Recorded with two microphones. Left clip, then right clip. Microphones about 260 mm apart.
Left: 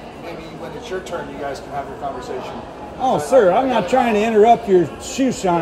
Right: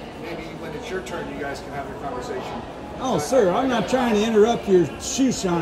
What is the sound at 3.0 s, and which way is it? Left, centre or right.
Speech, centre.